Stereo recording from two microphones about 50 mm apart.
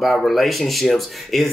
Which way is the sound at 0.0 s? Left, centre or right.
Centre.